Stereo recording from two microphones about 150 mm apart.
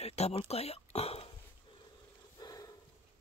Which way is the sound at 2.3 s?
25° left (ahead or behind).